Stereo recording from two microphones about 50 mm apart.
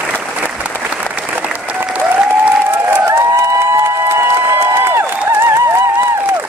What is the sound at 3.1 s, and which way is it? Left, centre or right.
Crowd, right.